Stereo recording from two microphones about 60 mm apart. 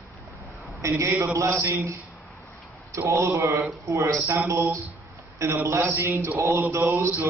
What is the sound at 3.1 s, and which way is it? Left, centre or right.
Mantra, right.